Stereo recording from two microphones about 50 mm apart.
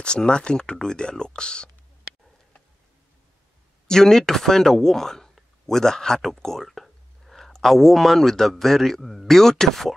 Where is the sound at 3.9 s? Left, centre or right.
Centre.